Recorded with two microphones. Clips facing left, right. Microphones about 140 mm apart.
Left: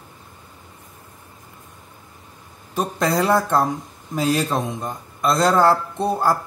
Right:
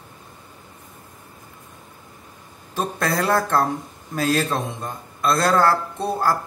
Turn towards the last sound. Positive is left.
turn(degrees=15)  # may be behind; listen again after turning